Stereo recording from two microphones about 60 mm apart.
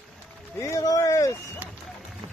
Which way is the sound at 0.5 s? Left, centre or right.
Left.